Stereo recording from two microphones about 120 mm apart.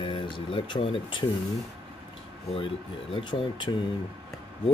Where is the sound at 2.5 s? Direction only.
50° left (ahead or behind).